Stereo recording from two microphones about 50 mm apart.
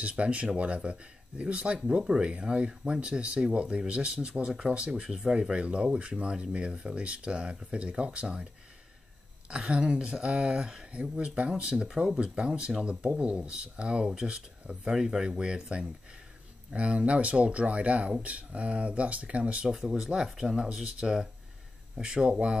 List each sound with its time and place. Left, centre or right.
0.0 s speech: right
9.8 s speech: right
13.0 s speech: right
19.7 s speech: centre